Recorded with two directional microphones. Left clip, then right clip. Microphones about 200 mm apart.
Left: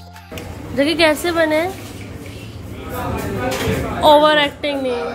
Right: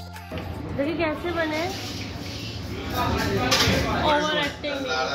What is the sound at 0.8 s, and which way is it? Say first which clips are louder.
Speech: left 11 dB; 55° left (ahead or behind).